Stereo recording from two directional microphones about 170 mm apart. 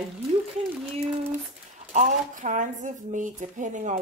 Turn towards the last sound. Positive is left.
turn(degrees=-45)  # may be behind; listen again after turning